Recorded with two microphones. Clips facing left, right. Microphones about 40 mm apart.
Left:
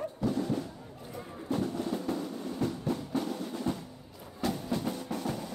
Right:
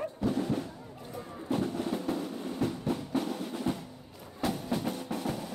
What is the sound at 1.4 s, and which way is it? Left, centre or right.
Train, right.